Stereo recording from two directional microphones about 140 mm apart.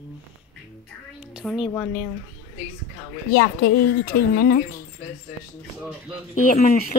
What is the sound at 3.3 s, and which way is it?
Speech, 90° left.